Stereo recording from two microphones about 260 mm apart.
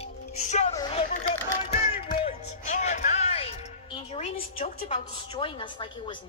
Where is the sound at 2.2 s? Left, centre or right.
Left.